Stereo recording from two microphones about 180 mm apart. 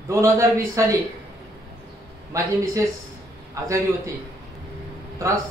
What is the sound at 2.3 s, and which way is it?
Speech, 15° right (ahead or behind).